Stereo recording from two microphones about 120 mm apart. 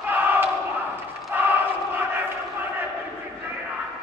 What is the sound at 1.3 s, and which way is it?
Battle cry, 15° right (ahead or behind).